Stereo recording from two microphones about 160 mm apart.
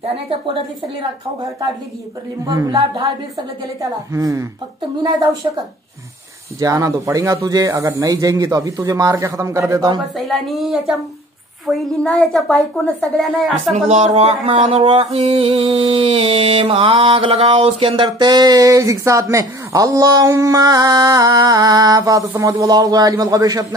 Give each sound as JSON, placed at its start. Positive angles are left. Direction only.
{"t": 2.4, "sound": "speech", "side_deg": -20}
{"t": 4.1, "sound": "speech", "side_deg": -20}
{"t": 6.6, "sound": "speech", "side_deg": -20}
{"t": 10.1, "sound": "a woman's voice", "side_deg": 0}
{"t": 13.8, "sound": "a sound", "side_deg": -40}
{"t": 22.3, "sound": "speech", "side_deg": -20}